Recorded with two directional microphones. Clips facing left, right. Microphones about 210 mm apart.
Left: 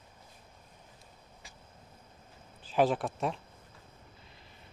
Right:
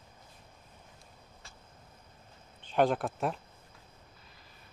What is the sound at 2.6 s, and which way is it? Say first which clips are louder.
Speech: even; centre (ahead or behind).